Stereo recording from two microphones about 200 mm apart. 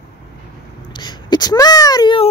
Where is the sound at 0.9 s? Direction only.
20° left (ahead or behind).